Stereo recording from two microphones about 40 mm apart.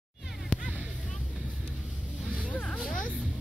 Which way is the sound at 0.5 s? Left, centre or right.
Left.